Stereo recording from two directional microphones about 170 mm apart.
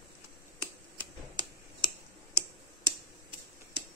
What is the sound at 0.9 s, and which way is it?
Tick-tock, 25° right (ahead or behind).